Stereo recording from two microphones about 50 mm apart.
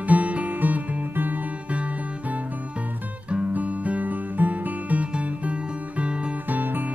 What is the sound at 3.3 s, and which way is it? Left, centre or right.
Music, right.